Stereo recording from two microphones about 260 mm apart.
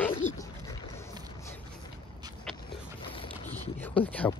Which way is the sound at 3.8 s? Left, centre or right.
Centre.